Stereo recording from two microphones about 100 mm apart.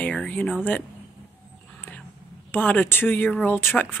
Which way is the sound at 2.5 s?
15° left (ahead or behind).